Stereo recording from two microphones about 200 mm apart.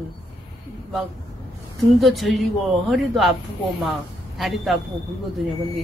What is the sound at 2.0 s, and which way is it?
Speech, centre (ahead or behind).